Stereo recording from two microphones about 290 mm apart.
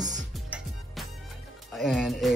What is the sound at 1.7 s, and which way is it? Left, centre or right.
Speech, centre.